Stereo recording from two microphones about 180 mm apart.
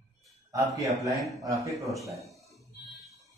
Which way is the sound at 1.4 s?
15° right (ahead or behind).